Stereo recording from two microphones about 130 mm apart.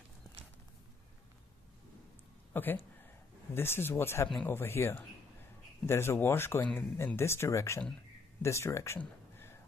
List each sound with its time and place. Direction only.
2.5 s speech: 15° left (ahead or behind)